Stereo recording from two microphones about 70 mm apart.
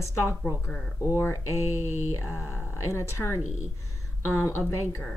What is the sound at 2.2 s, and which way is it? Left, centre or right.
A woman's voice, left.